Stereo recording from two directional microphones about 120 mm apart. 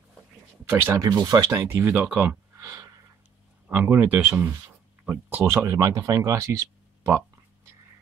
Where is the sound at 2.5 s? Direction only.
25° right (ahead or behind).